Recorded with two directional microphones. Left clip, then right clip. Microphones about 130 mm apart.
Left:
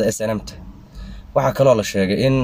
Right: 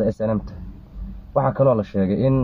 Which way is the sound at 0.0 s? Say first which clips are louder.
Left 2 dB; 15° left (ahead or behind).